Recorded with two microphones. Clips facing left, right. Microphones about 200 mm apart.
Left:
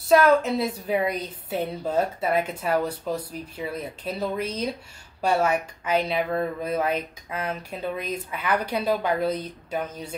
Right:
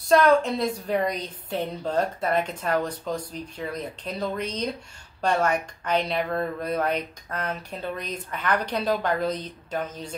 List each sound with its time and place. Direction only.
0.1 s speech: 5° left (ahead or behind)